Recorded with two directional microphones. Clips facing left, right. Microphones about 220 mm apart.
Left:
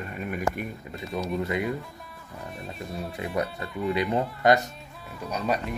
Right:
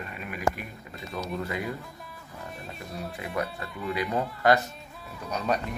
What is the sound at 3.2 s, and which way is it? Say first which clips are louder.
Speech: left 3 dB; 30° left (ahead or behind).